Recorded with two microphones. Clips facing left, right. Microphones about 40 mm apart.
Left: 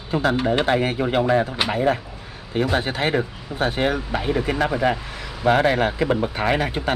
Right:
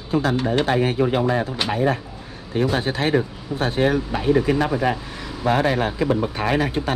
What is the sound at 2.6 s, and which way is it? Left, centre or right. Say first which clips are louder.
Speech: even; left.